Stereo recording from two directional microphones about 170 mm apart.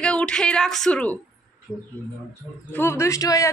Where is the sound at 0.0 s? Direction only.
5° left (ahead or behind).